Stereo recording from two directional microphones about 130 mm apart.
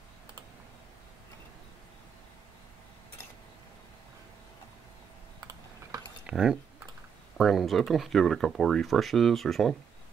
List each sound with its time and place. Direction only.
5.4 s typing: 25° right (ahead or behind)
6.2 s speech: 5° right (ahead or behind)